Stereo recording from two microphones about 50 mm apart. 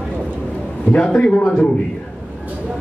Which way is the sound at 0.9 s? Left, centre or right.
Left.